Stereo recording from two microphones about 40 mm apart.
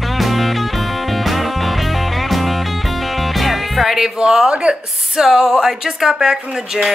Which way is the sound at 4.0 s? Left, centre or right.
Centre.